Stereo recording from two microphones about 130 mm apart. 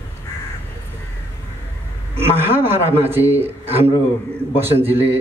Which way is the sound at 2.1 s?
15° right (ahead or behind).